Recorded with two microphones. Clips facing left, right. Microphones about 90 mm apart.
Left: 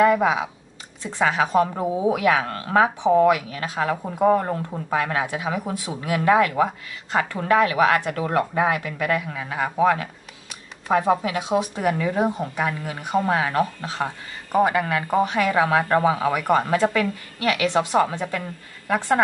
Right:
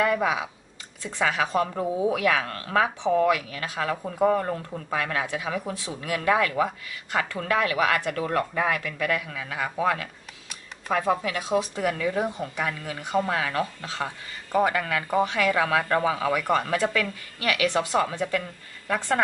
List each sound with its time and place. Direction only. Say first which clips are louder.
0.0 s speech: left 6 dB; 25° left (ahead or behind)